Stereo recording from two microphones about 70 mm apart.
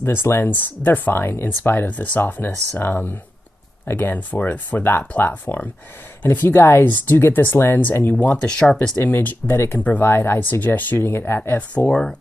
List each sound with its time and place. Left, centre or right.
0.0 s speech: left
11.7 s speech: centre